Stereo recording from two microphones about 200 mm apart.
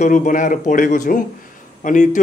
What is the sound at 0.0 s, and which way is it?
Speech, 40° left (ahead or behind).